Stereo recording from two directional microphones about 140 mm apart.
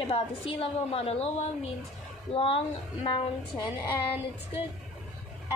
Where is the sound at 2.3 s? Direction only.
40° left (ahead or behind).